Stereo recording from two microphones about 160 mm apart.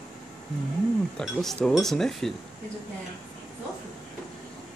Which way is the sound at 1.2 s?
5° left (ahead or behind).